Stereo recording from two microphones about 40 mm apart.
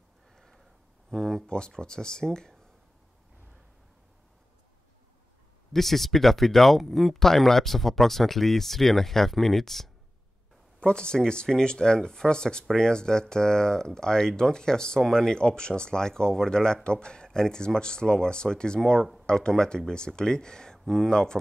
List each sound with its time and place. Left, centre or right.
1.1 s speech: centre
5.7 s speech: centre
10.9 s speech: left